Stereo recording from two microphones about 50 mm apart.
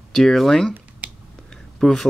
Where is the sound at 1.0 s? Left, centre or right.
Right.